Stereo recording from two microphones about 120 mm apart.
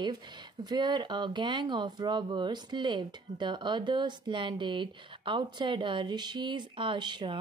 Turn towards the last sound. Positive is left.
turn(degrees=-40)  # may be behind; listen again after turning